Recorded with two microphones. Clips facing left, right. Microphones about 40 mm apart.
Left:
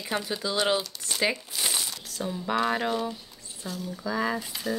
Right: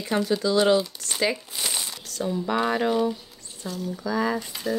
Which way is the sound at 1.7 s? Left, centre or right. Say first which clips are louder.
Even; centre.